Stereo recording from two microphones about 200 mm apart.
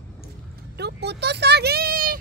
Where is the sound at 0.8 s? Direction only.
55° right (ahead or behind).